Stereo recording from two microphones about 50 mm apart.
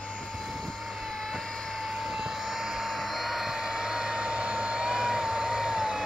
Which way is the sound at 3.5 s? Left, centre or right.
Centre.